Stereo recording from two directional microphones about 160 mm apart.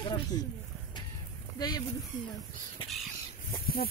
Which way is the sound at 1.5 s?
25° left (ahead or behind).